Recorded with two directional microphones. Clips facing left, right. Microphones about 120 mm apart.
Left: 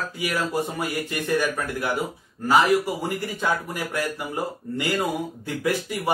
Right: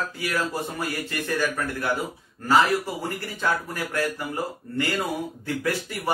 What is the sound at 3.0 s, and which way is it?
Speech, 15° left (ahead or behind).